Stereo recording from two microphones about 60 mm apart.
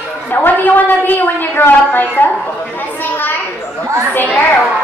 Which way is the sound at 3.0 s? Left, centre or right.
Left.